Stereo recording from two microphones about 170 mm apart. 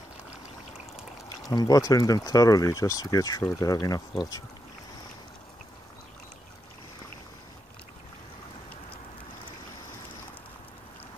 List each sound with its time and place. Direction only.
1.5 s speech: 20° left (ahead or behind)